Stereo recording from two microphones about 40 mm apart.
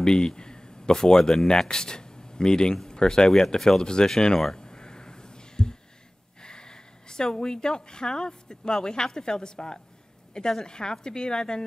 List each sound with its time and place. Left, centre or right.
0.0 s speech: centre
4.6 s a sound: centre
6.4 s a woman's voice: centre